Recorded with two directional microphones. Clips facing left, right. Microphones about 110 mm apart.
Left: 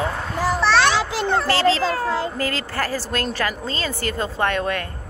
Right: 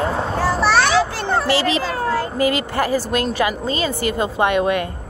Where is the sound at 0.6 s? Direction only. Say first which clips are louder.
Right 1 dB; 10° right (ahead or behind).